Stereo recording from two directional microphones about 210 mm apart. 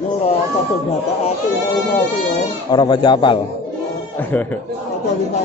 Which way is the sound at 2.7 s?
20° left (ahead or behind).